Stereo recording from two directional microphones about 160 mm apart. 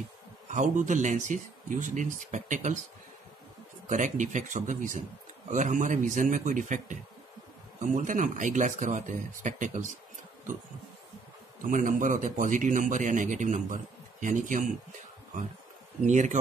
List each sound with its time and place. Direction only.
0.5 s speech: 50° right (ahead or behind)
3.9 s speech: 50° right (ahead or behind)
11.6 s speech: 55° right (ahead or behind)
16.1 s speech: 50° right (ahead or behind)